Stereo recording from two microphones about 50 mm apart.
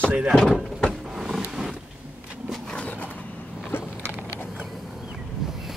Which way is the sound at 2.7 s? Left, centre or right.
Left.